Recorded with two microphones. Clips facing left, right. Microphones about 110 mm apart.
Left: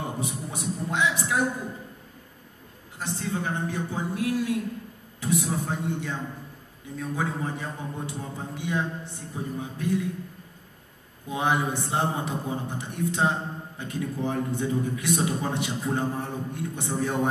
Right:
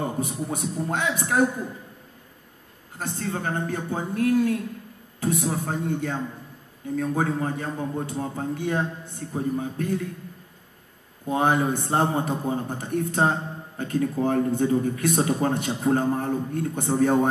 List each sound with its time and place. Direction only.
0.0 s a man's voice: 50° right (ahead or behind)
3.0 s a man's voice: 50° right (ahead or behind)
11.2 s a man's voice: 45° right (ahead or behind)